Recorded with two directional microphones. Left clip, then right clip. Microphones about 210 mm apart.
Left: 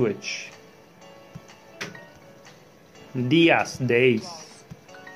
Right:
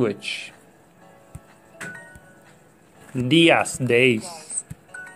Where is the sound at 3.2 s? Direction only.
20° right (ahead or behind).